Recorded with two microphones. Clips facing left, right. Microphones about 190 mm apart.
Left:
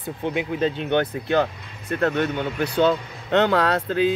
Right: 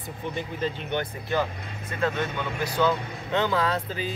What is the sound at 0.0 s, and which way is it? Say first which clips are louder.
Speech: left 7 dB; 70° left (ahead or behind).